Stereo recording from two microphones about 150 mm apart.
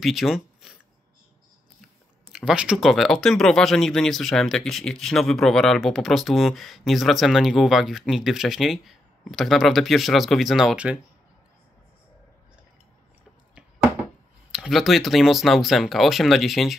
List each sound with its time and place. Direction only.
0.0 s a sound: centre (ahead or behind)
2.3 s speech: 5° right (ahead or behind)
14.5 s speech: 5° right (ahead or behind)